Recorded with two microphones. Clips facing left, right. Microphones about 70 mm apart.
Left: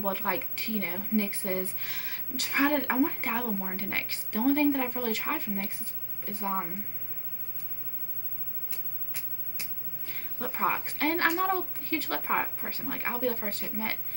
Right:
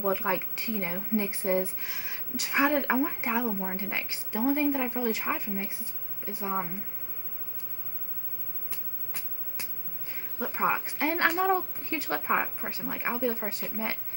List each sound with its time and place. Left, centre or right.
0.0 s speech: centre
10.0 s a woman's voice: centre